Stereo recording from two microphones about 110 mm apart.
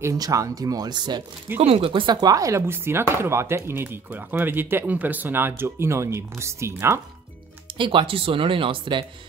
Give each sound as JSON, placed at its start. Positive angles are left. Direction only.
{"t": 0.0, "sound": "speech", "side_deg": -30}
{"t": 1.6, "sound": "speech", "side_deg": -55}
{"t": 7.7, "sound": "speech", "side_deg": -50}